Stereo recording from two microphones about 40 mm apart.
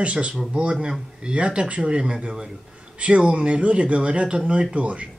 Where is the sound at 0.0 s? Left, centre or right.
Right.